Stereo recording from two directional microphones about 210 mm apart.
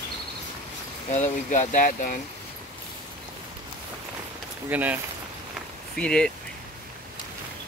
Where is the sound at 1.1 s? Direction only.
35° left (ahead or behind).